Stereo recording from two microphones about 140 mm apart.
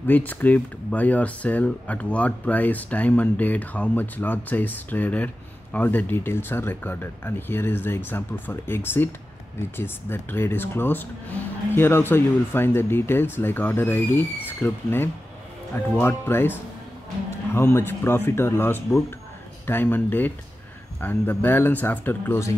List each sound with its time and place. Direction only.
0.0 s speech: 10° left (ahead or behind)